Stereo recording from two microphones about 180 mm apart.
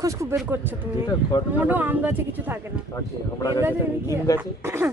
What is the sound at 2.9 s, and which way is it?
Speech, 20° left (ahead or behind).